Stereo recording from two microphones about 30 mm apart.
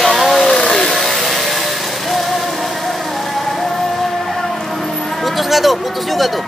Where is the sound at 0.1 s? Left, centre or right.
Centre.